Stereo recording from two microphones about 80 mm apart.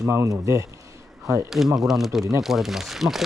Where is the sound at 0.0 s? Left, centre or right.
Right.